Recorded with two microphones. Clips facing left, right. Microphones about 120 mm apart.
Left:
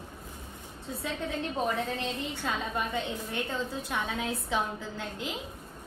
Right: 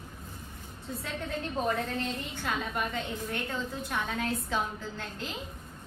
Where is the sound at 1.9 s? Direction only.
25° left (ahead or behind).